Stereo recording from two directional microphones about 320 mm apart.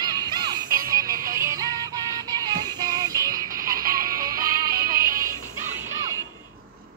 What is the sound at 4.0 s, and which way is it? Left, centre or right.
Music, centre.